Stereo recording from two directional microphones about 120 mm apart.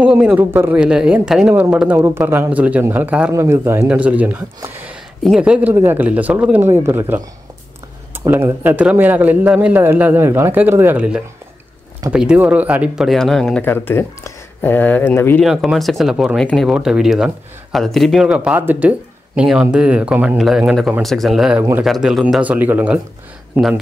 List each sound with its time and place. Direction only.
0.0 s a man's voice: 10° right (ahead or behind)
3.3 s a man's voice: 20° right (ahead or behind)
3.8 s a man's voice: 10° right (ahead or behind)
8.2 s a man's voice: 25° right (ahead or behind); by 13.6 s 5° left (ahead or behind)
13.6 s speech: 15° left (ahead or behind)
15.4 s a man's voice: centre (ahead or behind)
22.4 s a man's voice: 15° right (ahead or behind)